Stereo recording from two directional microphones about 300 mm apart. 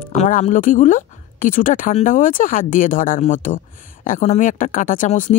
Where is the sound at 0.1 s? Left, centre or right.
Left.